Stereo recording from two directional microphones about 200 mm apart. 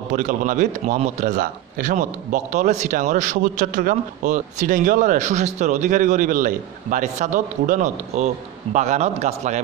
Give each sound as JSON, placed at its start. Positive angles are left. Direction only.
{"t": 0.1, "sound": "speech", "side_deg": -40}